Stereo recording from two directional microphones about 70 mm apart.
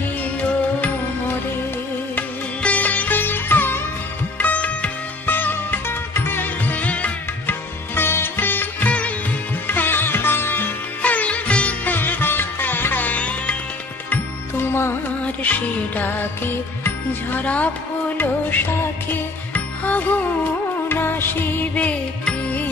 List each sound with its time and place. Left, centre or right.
2.1 s music: left
7.9 s sitar: left
11.0 s music: centre
14.1 s music: left
16.8 s music: left
21.7 s music: centre